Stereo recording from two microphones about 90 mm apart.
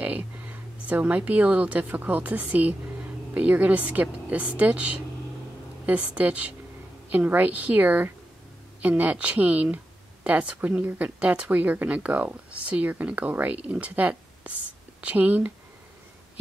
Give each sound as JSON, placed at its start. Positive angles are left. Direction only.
{"t": 0.0, "sound": "speech", "side_deg": -15}